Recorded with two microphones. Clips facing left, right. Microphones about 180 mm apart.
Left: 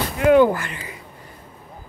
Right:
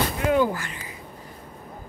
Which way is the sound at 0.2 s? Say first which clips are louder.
Left 9 dB; 70° left (ahead or behind).